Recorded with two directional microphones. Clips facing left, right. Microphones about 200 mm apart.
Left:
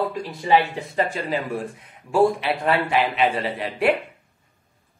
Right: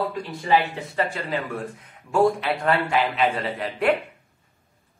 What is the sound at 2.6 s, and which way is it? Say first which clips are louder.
Speech: left 1 dB; 10° left (ahead or behind).